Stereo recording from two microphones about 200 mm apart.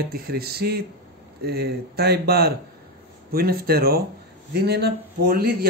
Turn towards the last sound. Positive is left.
turn(degrees=-50)  # may be behind; listen again after turning